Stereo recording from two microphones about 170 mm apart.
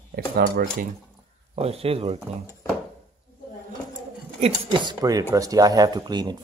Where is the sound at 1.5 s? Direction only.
35° right (ahead or behind).